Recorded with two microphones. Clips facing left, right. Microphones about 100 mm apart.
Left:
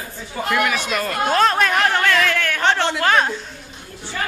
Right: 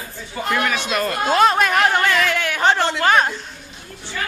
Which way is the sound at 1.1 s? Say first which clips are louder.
Right 1 dB; 10° right (ahead or behind).